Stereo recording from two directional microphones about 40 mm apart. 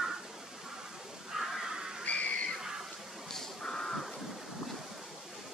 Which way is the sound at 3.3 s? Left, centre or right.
Centre.